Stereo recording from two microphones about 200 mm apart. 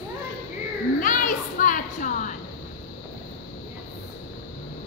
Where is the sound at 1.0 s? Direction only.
40° left (ahead or behind).